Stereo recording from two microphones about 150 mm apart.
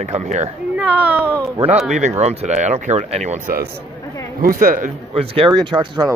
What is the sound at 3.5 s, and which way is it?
Speech, 90° right.